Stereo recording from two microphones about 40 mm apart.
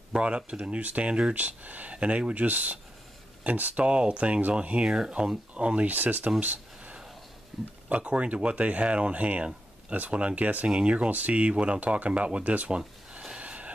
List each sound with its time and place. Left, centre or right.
0.2 s speech: right
0.6 s speech: right
3.8 s speech: right
4.8 s speech: centre
5.9 s speech: right
6.4 s a sound: right
7.5 s speech: centre
7.9 s speech: right
10.7 s speech: right
11.1 s speech: right
13.4 s vehicle: right